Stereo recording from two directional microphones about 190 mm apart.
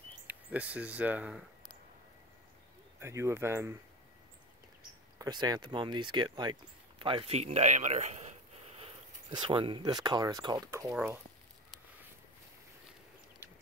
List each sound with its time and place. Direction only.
0.3 s speech: 10° right (ahead or behind)
3.0 s speech: 15° right (ahead or behind)
5.2 s speech: 20° right (ahead or behind)